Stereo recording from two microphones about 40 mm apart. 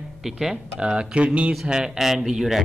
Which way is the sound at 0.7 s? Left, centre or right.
Right.